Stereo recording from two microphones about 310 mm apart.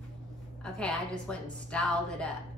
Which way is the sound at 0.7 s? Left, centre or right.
Centre.